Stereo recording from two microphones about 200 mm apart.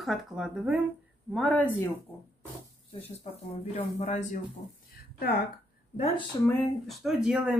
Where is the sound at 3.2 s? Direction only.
30° left (ahead or behind).